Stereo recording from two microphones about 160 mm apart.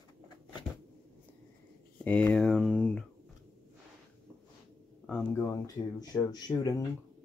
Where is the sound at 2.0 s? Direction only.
10° left (ahead or behind).